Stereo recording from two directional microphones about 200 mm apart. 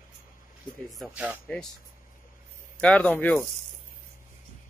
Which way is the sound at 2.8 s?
5° left (ahead or behind).